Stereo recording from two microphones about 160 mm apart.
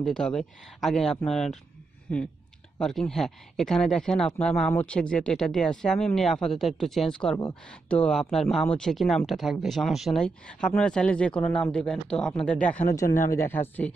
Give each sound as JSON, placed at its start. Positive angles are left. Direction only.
{"t": 0.0, "sound": "speech", "side_deg": 5}
{"t": 2.8, "sound": "speech", "side_deg": 0}
{"t": 12.9, "sound": "speech", "side_deg": 20}